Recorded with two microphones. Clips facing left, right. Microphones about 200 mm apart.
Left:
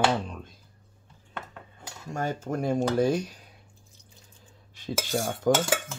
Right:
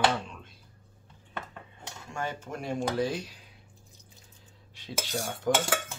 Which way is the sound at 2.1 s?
40° left (ahead or behind).